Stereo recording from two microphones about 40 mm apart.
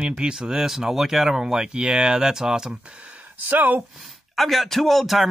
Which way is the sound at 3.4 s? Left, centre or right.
Right.